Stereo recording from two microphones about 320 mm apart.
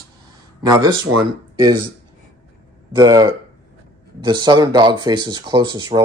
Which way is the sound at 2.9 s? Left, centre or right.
Centre.